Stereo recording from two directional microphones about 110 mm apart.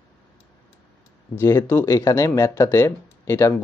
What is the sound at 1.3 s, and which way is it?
Speech, 20° left (ahead or behind).